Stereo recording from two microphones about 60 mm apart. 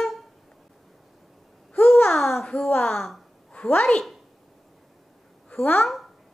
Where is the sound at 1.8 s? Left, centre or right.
Left.